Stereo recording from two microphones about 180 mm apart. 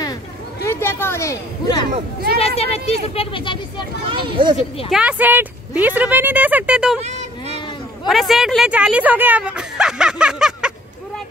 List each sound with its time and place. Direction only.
0.7 s speech: 15° left (ahead or behind)
2.3 s speech: 35° left (ahead or behind)
4.1 s speech: 25° right (ahead or behind)
4.6 s speech: 35° left (ahead or behind)
4.9 s speech: 5° right (ahead or behind)
7.0 s a sound: 40° right (ahead or behind)
8.1 s speech: centre (ahead or behind)